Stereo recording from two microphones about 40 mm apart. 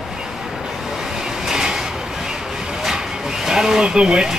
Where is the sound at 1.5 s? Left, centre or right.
Centre.